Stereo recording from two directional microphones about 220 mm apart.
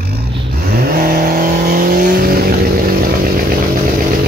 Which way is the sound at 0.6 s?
40° right (ahead or behind).